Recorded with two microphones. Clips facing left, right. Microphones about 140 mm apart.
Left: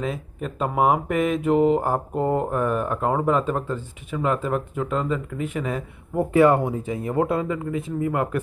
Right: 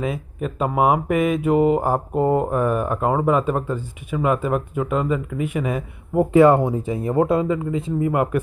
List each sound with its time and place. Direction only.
0.0 s speech: 5° right (ahead or behind)
6.3 s speech: 25° right (ahead or behind)